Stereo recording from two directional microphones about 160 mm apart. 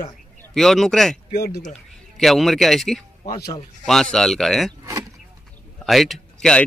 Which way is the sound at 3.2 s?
70° left (ahead or behind).